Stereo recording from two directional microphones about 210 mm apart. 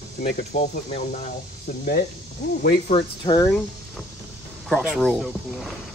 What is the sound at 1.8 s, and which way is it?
Speech, 45° left (ahead or behind).